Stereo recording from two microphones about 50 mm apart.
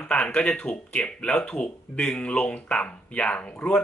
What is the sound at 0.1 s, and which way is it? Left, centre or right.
Speech, left.